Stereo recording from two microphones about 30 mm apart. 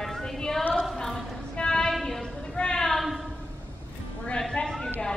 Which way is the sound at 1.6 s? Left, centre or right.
Left.